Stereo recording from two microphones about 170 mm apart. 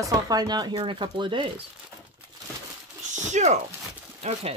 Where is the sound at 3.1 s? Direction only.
45° right (ahead or behind).